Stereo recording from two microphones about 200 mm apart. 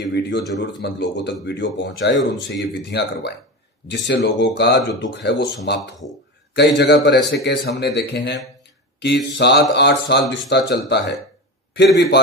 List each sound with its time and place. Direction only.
0.0 s speech: 60° left (ahead or behind)